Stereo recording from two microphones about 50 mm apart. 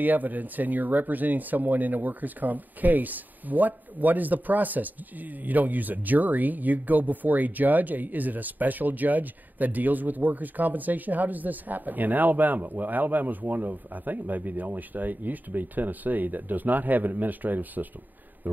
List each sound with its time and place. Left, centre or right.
0.0 s speech: right